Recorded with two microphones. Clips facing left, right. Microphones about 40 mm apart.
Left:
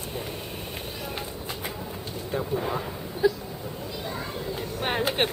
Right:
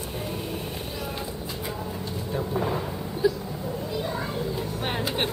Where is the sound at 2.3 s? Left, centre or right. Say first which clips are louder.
Left 1 dB; left.